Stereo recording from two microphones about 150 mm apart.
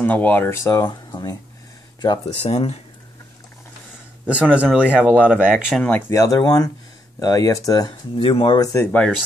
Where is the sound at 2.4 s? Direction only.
40° left (ahead or behind).